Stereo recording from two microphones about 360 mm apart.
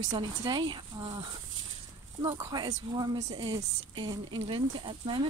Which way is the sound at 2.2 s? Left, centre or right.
Centre.